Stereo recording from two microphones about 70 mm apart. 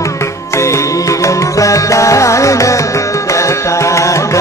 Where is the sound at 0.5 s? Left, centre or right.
Left.